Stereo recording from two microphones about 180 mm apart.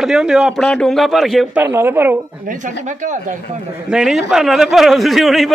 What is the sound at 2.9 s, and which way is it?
Speech, 45° right (ahead or behind).